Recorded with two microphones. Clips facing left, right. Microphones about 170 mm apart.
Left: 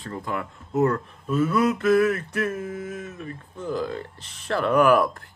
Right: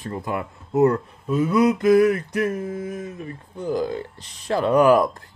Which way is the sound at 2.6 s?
40° right (ahead or behind).